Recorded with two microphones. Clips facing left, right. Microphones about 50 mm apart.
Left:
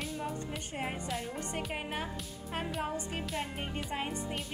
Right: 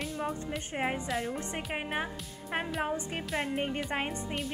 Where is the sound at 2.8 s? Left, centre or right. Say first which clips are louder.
Right 3 dB; right.